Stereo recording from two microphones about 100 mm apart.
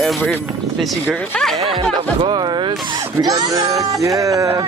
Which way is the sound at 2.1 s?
55° right (ahead or behind).